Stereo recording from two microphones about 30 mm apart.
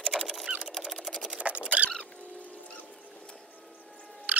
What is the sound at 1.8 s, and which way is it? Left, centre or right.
Rodents, right.